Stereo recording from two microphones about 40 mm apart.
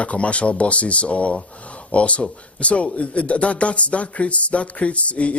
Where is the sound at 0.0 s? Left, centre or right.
Left.